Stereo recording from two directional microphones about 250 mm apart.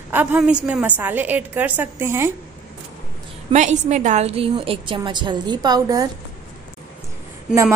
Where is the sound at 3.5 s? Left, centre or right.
Right.